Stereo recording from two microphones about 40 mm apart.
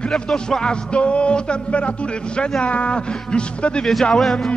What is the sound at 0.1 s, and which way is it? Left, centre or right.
Music, centre.